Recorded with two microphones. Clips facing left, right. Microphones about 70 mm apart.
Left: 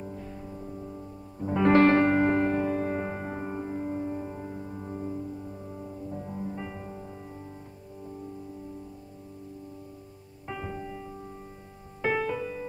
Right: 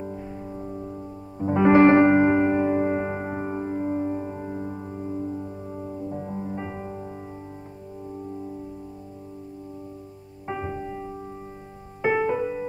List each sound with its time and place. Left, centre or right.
0.0 s music: centre
4.8 s music: centre
5.1 s music: right
10.4 s music: right